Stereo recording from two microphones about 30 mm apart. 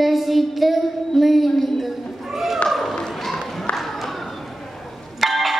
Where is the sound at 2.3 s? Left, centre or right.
Centre.